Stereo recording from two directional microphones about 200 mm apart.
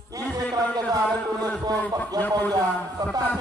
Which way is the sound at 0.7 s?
20° right (ahead or behind).